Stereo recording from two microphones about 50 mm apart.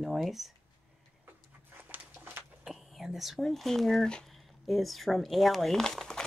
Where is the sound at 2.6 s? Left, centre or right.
Centre.